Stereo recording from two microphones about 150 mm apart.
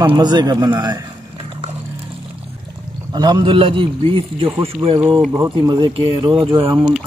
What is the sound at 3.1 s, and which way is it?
A man's voice, 30° right (ahead or behind).